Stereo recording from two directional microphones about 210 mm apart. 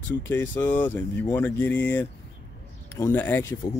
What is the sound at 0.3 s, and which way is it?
Speech, 10° left (ahead or behind).